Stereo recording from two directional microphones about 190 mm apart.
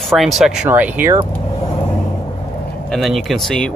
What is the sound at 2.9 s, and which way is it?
Speech, centre (ahead or behind).